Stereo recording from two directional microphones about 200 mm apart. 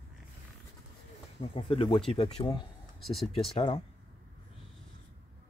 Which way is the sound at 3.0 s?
Centre (ahead or behind).